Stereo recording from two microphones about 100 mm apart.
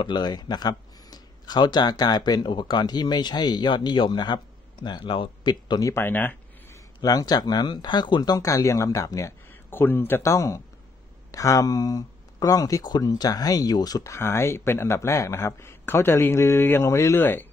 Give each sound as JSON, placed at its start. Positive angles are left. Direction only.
{"t": 0.0, "sound": "speech", "side_deg": 45}
{"t": 5.9, "sound": "a sound", "side_deg": 25}
{"t": 7.0, "sound": "speech", "side_deg": 40}
{"t": 9.5, "sound": "speech", "side_deg": 20}
{"t": 14.1, "sound": "speech", "side_deg": 25}